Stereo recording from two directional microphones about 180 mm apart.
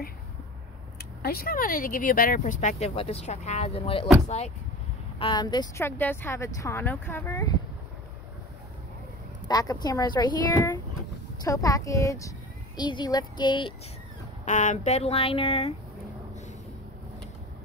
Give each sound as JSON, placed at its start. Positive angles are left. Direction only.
{"t": 1.2, "sound": "speech", "side_deg": 55}
{"t": 5.2, "sound": "speech", "side_deg": 25}
{"t": 9.5, "sound": "speech", "side_deg": 20}
{"t": 14.4, "sound": "speech", "side_deg": 45}